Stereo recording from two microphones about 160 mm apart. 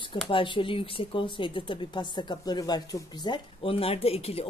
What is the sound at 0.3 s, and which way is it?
A woman's voice, 30° left (ahead or behind).